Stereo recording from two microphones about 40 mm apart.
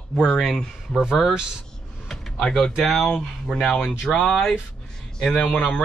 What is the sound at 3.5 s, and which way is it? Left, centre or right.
Speech, left.